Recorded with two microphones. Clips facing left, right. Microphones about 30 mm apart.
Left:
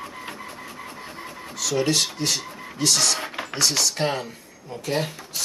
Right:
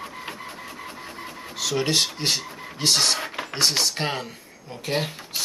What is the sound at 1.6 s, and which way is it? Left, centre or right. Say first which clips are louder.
Speech: even; right.